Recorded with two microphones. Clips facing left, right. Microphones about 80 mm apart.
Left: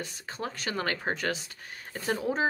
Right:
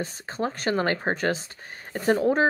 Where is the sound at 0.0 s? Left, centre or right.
Right.